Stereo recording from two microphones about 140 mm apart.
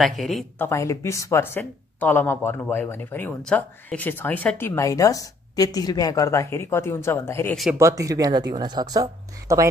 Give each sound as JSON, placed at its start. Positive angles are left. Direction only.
{"t": 0.0, "sound": "speech", "side_deg": 0}
{"t": 0.6, "sound": "speech", "side_deg": 20}
{"t": 7.7, "sound": "speech", "side_deg": -20}